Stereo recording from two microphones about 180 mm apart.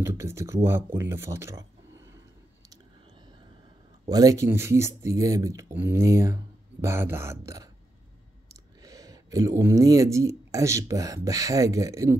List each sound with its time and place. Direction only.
0.0 s speech: 15° right (ahead or behind)
4.0 s speech: 20° right (ahead or behind)